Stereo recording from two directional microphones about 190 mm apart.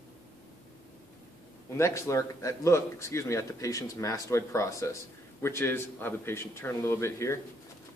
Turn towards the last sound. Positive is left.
turn(degrees=15)  # may be behind; listen again after turning